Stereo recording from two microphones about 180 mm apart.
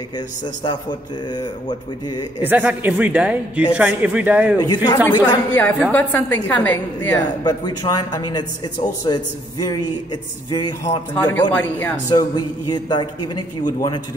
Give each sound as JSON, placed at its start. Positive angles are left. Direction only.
{"t": 0.7, "sound": "a woman's voice", "side_deg": 25}
{"t": 2.4, "sound": "a woman's voice", "side_deg": -10}
{"t": 4.6, "sound": "a woman's voice", "side_deg": 20}
{"t": 5.6, "sound": "a woman's voice", "side_deg": 10}
{"t": 11.5, "sound": "speech", "side_deg": 10}
{"t": 12.1, "sound": "a woman's voice", "side_deg": 25}